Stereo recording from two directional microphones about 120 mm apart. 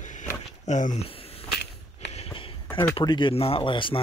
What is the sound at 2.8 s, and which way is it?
Speech, 40° left (ahead or behind).